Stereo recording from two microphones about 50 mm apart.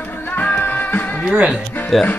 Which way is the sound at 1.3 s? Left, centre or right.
Centre.